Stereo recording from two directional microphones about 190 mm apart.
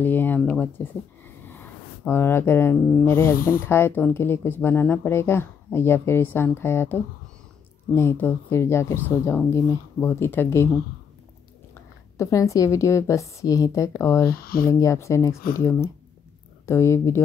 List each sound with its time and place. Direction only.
0.0 s speech: 10° left (ahead or behind)
14.3 s speech: 50° left (ahead or behind)
14.7 s speech: 15° left (ahead or behind)